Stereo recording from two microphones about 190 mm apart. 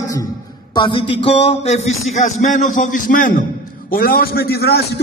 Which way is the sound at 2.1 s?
40° left (ahead or behind).